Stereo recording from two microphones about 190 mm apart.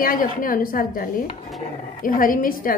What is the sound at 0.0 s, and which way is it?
A woman's voice, 45° left (ahead or behind).